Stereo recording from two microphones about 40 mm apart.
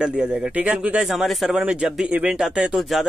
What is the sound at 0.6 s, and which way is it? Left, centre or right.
Speech, right.